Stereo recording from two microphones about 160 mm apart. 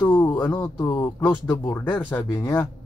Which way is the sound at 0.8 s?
20° left (ahead or behind).